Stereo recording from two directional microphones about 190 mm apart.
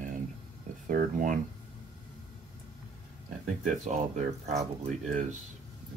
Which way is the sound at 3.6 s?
40° right (ahead or behind).